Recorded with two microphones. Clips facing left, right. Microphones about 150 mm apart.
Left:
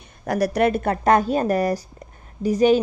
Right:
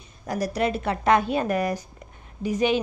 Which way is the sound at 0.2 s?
65° left (ahead or behind).